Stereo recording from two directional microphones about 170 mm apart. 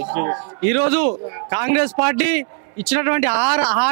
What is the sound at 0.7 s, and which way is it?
A man's voice, 10° right (ahead or behind).